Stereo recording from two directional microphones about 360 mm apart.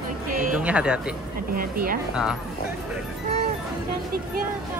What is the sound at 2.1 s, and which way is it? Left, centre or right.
Speech, centre.